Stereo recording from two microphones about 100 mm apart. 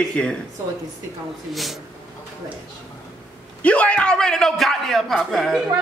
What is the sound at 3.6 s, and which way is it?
A man's voice, 15° left (ahead or behind).